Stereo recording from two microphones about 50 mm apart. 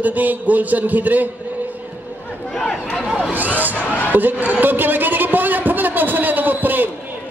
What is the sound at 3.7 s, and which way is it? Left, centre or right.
Speech, left.